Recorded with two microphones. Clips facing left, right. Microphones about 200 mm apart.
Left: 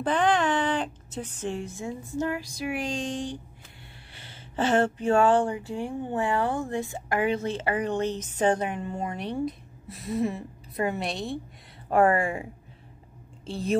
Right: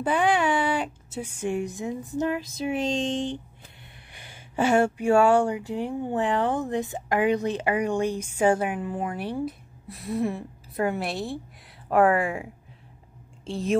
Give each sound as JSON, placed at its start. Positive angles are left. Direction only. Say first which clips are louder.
{"t": 0.0, "sound": "speech", "louder": "right 1 dB", "side_deg": -10}
{"t": 13.5, "sound": "speech", "louder": "right 2 dB", "side_deg": 0}